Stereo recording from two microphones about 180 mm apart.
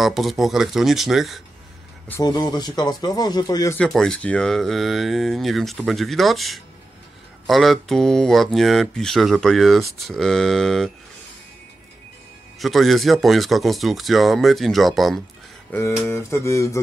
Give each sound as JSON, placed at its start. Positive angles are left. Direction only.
{"t": 0.0, "sound": "speech", "side_deg": 0}
{"t": 2.0, "sound": "speech", "side_deg": 15}
{"t": 3.7, "sound": "speech", "side_deg": 5}
{"t": 12.5, "sound": "speech", "side_deg": 0}
{"t": 15.7, "sound": "a sound", "side_deg": 15}